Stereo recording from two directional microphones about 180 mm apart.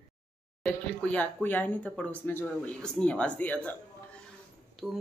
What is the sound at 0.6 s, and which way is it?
Speech, 5° left (ahead or behind).